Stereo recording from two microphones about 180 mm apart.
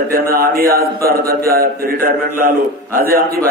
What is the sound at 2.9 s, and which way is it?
Speech, 55° right (ahead or behind).